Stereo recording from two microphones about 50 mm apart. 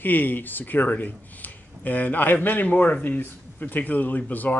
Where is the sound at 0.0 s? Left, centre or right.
Left.